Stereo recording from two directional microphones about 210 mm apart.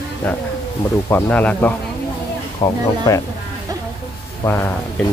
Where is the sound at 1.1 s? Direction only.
10° left (ahead or behind).